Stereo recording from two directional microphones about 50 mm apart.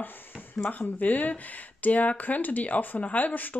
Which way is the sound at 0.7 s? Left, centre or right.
Left.